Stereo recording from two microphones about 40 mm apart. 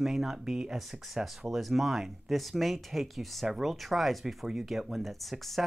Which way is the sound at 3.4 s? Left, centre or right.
Centre.